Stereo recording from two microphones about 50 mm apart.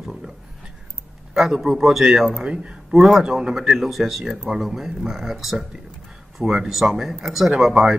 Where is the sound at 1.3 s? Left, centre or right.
Centre.